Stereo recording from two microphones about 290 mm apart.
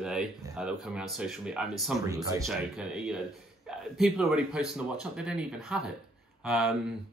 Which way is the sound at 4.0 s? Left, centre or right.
Centre.